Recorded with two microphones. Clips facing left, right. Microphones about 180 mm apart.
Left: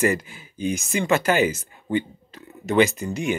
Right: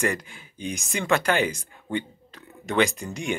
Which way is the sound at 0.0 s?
5° left (ahead or behind).